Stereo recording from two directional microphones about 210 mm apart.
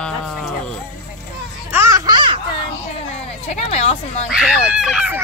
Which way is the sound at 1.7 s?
15° right (ahead or behind).